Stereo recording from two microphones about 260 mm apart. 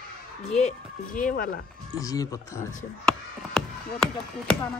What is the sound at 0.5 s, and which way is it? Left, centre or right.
Speech, left.